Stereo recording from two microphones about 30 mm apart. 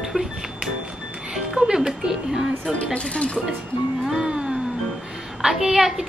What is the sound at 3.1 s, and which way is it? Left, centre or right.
Speech, left.